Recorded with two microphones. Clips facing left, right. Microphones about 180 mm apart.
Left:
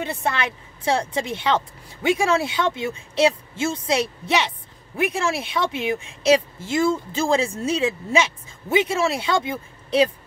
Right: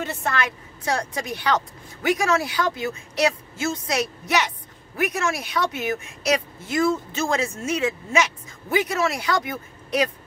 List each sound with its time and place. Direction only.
0.1 s speech: 25° left (ahead or behind)